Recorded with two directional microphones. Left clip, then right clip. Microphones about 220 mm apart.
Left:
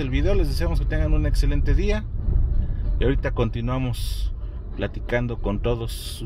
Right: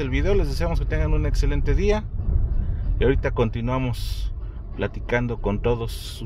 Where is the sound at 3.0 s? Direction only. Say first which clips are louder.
Right 3 dB; 25° right (ahead or behind).